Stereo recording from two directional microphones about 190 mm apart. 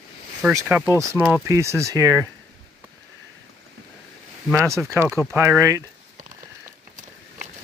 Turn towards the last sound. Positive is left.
turn(degrees=-15)  # may be behind; listen again after turning